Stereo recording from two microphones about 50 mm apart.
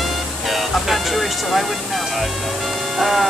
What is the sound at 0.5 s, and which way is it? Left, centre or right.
Music, centre.